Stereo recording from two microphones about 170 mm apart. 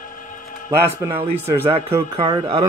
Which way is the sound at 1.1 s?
35° right (ahead or behind).